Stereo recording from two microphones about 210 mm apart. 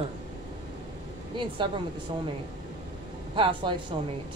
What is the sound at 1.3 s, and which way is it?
Speech, 25° right (ahead or behind).